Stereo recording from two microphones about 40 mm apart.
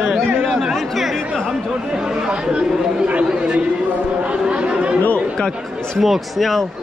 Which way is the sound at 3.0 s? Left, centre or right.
Right.